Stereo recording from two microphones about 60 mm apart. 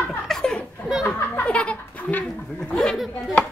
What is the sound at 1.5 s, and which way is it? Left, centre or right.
Speech, centre.